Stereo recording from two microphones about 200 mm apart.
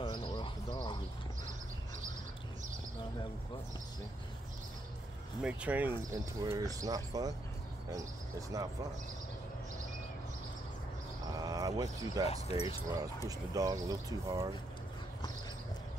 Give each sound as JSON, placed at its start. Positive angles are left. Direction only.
{"t": 0.0, "sound": "bird", "side_deg": 25}
{"t": 5.4, "sound": "speech", "side_deg": -5}
{"t": 11.3, "sound": "a sound", "side_deg": -20}
{"t": 12.3, "sound": "speech", "side_deg": 30}
{"t": 13.5, "sound": "speech", "side_deg": -15}